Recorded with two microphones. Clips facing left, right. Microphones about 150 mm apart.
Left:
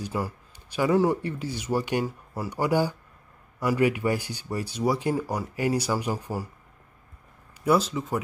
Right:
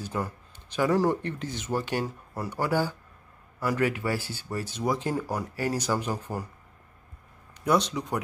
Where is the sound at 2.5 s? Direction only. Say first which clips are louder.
Left 3 dB; 15° left (ahead or behind).